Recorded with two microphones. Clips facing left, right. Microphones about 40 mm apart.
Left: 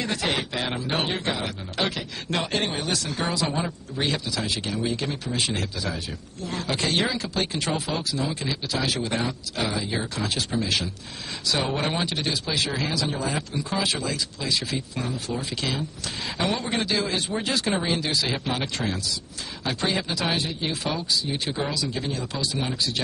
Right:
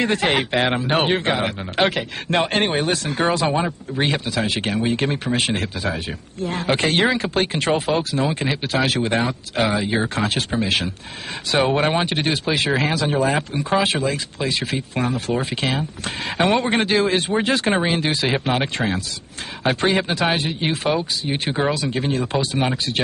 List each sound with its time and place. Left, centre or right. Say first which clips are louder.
0.0 s speech: right 7 dB; right